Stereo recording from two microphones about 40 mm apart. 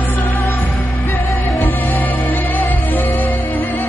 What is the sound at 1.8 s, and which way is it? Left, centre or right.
Music, left.